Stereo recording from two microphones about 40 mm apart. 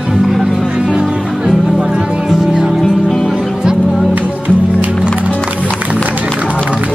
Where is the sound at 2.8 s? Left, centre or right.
Centre.